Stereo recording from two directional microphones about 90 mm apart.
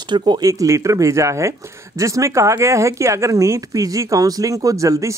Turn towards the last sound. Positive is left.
turn(degrees=-35)  # may be behind; listen again after turning